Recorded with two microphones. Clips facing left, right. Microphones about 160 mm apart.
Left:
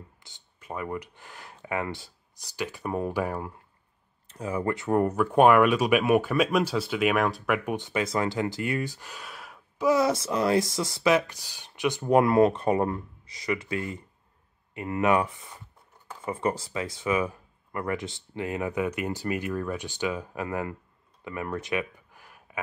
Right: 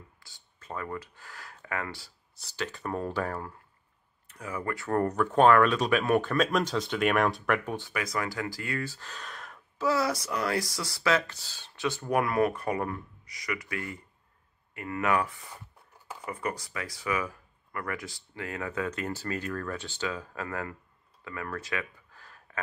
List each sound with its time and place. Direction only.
0.2 s speech: 15° left (ahead or behind)
4.3 s speech: 25° left (ahead or behind)
5.0 s speech: 10° left (ahead or behind)
7.7 s speech: 20° left (ahead or behind)
21.2 s a sound: 20° left (ahead or behind)